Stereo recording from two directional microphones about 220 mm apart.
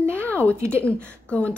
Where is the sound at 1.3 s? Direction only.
5° left (ahead or behind).